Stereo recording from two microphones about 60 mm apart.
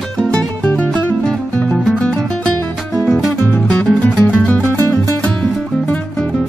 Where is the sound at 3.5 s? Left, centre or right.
Left.